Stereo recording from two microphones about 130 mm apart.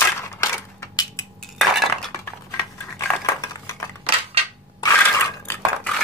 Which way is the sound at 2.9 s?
25° left (ahead or behind).